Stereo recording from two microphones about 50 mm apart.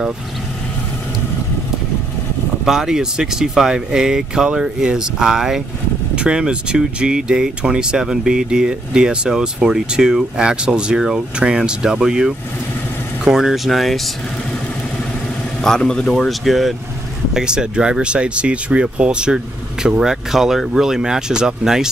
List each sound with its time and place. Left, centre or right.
2.6 s speech: centre
15.6 s speech: centre
16.3 s speech: centre
17.3 s speech: centre